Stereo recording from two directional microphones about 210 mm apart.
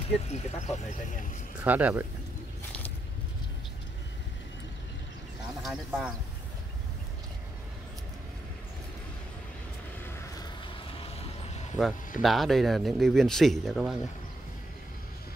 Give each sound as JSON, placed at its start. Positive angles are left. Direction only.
{"t": 0.3, "sound": "speech", "side_deg": 35}
{"t": 1.6, "sound": "speech", "side_deg": -5}
{"t": 5.6, "sound": "speech", "side_deg": 0}
{"t": 11.0, "sound": "vehicle", "side_deg": 30}
{"t": 12.2, "sound": "speech", "side_deg": 0}